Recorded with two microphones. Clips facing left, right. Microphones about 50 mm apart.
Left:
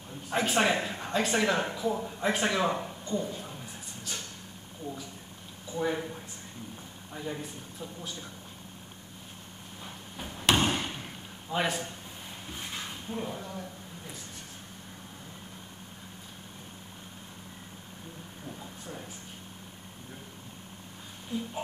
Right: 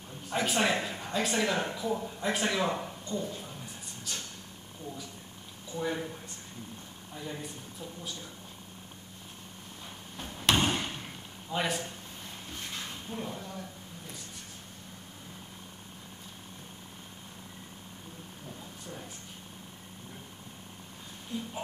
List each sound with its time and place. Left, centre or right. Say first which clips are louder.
0.3 s speech: left 2 dB; centre
5.8 s speech: left 3 dB; centre
7.2 s speech: left 3 dB; centre
10.1 s slam: left 1 dB; centre
12.4 s a sound: left 2 dB; centre
21.3 s speech: left 3 dB; centre